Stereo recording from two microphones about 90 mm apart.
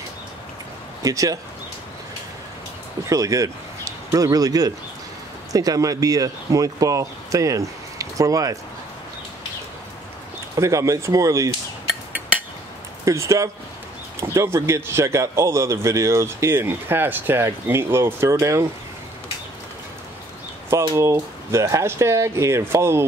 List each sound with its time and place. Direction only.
1.0 s speech: 40° right (ahead or behind)
3.1 s speech: 40° right (ahead or behind)
10.5 s speech: 35° right (ahead or behind)
13.0 s a man's voice: 35° right (ahead or behind)
20.9 s speech: 35° right (ahead or behind)